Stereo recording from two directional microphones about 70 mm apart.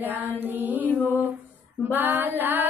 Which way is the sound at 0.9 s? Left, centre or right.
Left.